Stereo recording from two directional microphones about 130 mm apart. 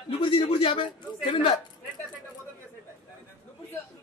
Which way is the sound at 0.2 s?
45° left (ahead or behind).